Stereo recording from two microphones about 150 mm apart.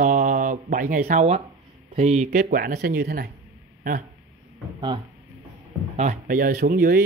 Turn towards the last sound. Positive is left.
turn(degrees=-70)  # may be behind; listen again after turning